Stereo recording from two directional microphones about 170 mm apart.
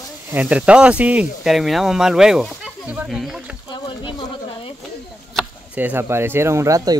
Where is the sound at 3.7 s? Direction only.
30° left (ahead or behind).